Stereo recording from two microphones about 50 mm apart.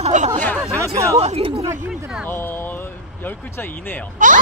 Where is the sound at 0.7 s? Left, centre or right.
Right.